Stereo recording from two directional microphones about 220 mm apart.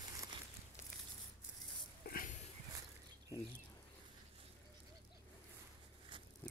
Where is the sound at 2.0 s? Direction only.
40° left (ahead or behind).